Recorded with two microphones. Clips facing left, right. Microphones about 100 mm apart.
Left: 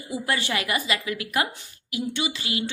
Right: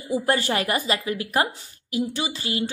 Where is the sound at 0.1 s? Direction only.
40° right (ahead or behind).